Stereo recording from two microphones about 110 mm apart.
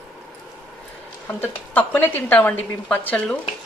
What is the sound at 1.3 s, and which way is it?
A woman's voice, 15° left (ahead or behind).